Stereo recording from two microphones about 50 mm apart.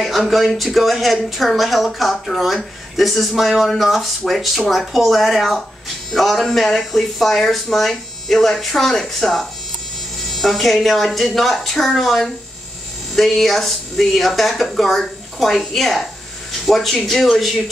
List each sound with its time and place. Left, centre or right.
0.0 s speech: centre